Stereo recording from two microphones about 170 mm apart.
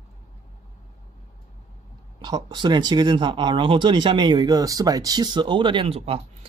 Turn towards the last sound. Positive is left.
turn(degrees=-35)  # may be behind; listen again after turning